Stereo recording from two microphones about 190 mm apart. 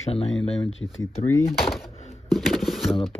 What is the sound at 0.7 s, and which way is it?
Speech, 90° left.